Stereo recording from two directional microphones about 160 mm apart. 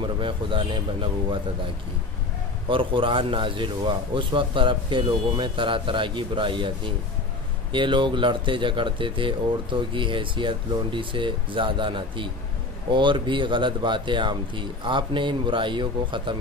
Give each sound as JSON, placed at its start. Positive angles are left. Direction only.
{"t": 0.0, "sound": "speech", "side_deg": -30}
{"t": 2.7, "sound": "speech", "side_deg": -30}
{"t": 7.7, "sound": "speech", "side_deg": -30}